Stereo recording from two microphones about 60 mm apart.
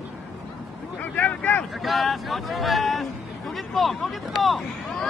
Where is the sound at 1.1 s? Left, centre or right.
Left.